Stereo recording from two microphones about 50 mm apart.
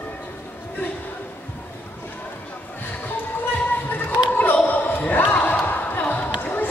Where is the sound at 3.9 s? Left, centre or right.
Left.